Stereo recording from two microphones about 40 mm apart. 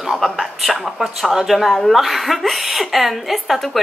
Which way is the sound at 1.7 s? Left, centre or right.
Centre.